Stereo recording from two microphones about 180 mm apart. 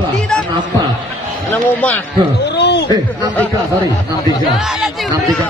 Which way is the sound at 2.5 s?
70° left (ahead or behind).